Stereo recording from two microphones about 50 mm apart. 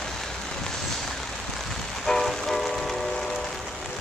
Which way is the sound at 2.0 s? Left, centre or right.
Centre.